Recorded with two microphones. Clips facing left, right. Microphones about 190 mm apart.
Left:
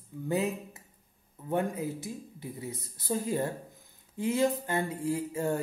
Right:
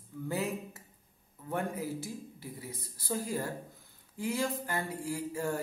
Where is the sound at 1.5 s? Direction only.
20° left (ahead or behind).